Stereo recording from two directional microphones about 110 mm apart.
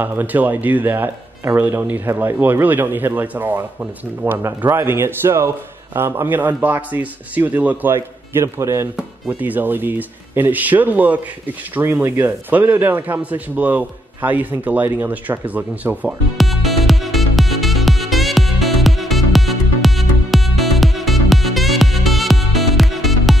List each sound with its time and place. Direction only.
0.0 s a man's voice: 15° right (ahead or behind)
8.9 s a man's voice: 10° right (ahead or behind)
16.3 s music: centre (ahead or behind)